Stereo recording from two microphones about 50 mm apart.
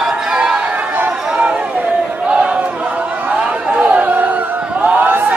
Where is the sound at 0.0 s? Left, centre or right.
Centre.